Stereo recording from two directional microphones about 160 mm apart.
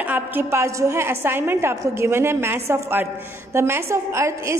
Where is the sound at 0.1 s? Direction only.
15° right (ahead or behind).